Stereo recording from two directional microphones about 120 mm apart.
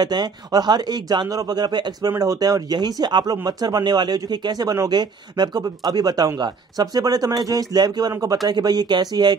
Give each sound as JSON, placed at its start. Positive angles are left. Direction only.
{"t": 0.0, "sound": "a man's voice", "side_deg": -35}